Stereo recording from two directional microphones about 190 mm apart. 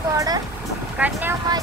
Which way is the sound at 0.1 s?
15° right (ahead or behind).